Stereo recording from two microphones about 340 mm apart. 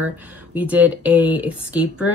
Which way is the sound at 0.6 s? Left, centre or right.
Centre.